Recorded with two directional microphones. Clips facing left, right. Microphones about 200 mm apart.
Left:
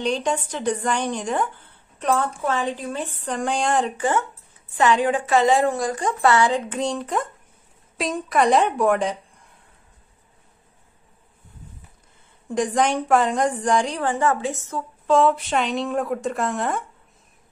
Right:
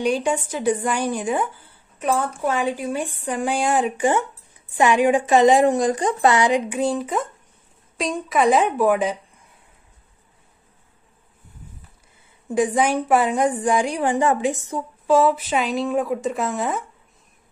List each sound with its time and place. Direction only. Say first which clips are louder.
0.0 s a woman's voice: right 2 dB; 10° right (ahead or behind)
12.4 s a woman's voice: right 2 dB; 5° right (ahead or behind)